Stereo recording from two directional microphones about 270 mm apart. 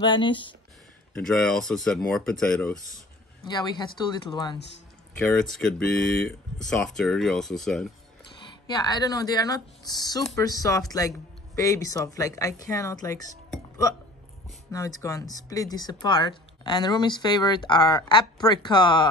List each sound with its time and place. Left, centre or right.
0.0 s speech: centre
1.1 s speech: centre
3.4 s speech: centre
5.1 s speech: centre
8.6 s speech: centre